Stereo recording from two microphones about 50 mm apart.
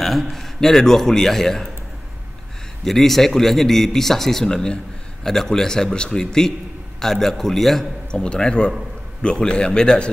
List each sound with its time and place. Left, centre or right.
0.0 s a man's voice: centre
2.8 s a man's voice: centre
8.1 s a man's voice: centre